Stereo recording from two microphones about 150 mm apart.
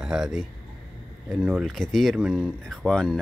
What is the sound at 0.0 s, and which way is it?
Speech, 5° right (ahead or behind).